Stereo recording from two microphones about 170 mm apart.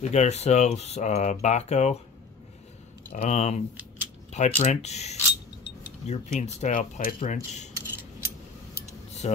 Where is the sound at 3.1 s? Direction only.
40° left (ahead or behind).